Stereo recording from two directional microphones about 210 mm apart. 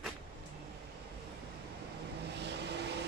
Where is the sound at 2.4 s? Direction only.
55° right (ahead or behind).